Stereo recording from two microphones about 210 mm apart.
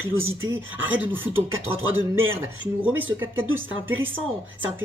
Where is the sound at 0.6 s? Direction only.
10° right (ahead or behind).